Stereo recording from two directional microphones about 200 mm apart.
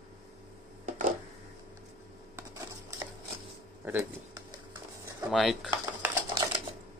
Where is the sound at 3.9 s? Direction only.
15° right (ahead or behind).